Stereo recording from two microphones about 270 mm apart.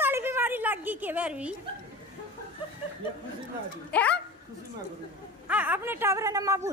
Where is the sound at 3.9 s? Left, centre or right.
Centre.